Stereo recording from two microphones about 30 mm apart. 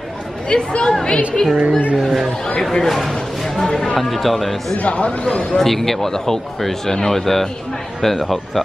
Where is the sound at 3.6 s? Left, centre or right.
Left.